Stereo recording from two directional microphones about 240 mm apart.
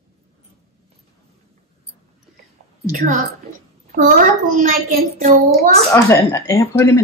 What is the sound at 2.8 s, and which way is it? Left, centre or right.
A child's voice, right.